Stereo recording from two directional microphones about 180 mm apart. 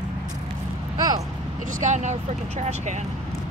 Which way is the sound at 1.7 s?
45° right (ahead or behind).